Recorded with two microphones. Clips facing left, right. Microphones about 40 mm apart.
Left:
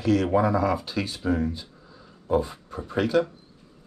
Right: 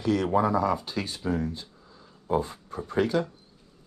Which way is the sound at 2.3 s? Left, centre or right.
Left.